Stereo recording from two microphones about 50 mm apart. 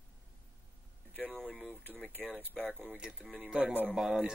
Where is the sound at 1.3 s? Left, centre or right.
Centre.